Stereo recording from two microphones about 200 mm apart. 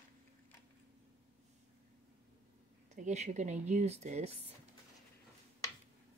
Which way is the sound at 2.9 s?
35° right (ahead or behind).